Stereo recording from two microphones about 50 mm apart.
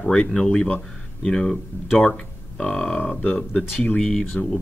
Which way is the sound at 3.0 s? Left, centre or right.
Left.